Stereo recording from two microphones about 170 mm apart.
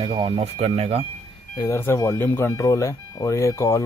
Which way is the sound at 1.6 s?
15° left (ahead or behind).